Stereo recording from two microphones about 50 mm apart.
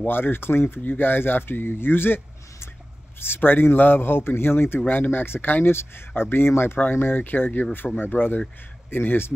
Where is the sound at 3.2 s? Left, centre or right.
Left.